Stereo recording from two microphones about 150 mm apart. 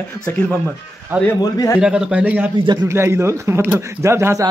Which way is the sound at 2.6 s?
30° right (ahead or behind).